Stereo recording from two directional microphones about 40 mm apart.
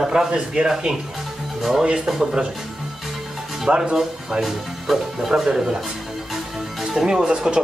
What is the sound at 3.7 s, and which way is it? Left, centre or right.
Speech, right.